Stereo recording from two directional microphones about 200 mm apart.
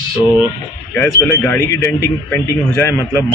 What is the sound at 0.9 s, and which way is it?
Speech, 10° left (ahead or behind).